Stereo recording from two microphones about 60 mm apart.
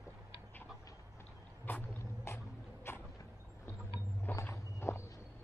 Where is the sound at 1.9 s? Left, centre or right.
Left.